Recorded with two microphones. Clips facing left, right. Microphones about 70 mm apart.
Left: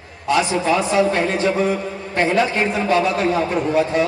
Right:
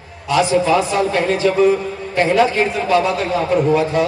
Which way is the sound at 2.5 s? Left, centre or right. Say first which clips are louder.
Right 2 dB; left.